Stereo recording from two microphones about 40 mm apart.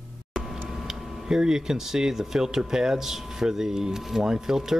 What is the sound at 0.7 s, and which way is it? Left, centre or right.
Speech, centre.